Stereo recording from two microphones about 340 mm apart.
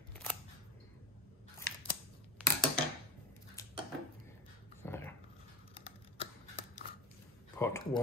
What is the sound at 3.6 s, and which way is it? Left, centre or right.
Dishes, centre.